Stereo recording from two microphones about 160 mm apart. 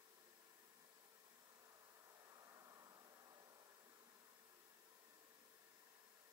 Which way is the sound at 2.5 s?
20° right (ahead or behind).